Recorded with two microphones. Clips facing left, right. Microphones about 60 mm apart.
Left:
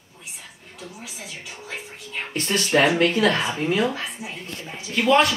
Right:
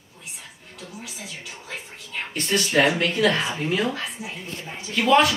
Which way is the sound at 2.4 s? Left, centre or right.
Left.